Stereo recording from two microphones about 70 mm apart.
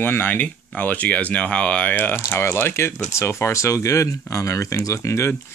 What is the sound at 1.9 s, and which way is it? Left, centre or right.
Speech, left.